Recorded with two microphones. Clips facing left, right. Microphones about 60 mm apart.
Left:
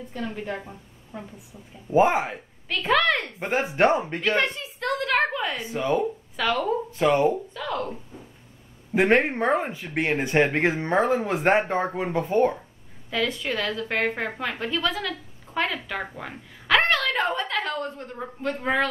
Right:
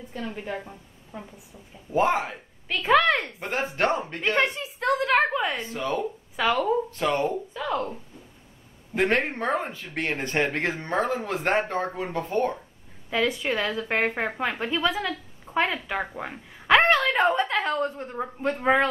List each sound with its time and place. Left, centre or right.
0.1 s a woman's voice: centre
1.9 s speech: centre
2.7 s speech: centre
3.3 s speech: centre
4.4 s a sound: centre
5.6 s speech: centre
6.3 s speech: centre
6.9 s speech: centre
7.5 s speech: centre
8.9 s speech: centre
13.1 s speech: centre